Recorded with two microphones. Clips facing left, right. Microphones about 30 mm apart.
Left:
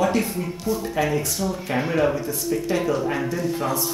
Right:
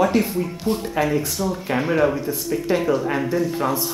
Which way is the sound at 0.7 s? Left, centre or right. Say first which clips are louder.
Right 1 dB; right.